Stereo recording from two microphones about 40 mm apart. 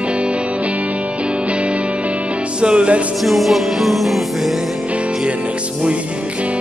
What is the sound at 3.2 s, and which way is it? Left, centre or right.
Music, centre.